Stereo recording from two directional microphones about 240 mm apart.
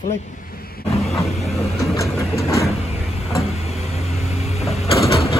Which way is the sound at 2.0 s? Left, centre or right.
Centre.